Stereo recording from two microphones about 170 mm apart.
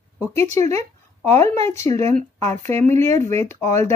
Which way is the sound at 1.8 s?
40° right (ahead or behind).